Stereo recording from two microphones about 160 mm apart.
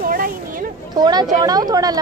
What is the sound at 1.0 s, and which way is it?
Speech, 25° right (ahead or behind).